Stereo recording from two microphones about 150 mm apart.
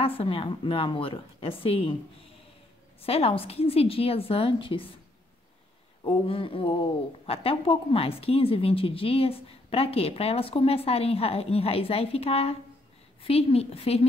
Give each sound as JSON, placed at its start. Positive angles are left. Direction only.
{"t": 0.0, "sound": "a woman's voice", "side_deg": 40}
{"t": 3.0, "sound": "a woman's voice", "side_deg": 40}
{"t": 6.0, "sound": "a woman's voice", "side_deg": 35}